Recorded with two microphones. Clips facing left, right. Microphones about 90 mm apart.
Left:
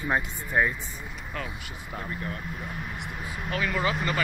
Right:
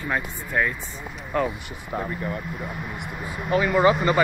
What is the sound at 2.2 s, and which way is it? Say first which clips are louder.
Speech: right 5 dB; 10° right (ahead or behind).